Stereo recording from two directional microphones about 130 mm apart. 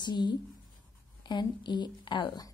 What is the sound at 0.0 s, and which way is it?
Speech, 35° left (ahead or behind).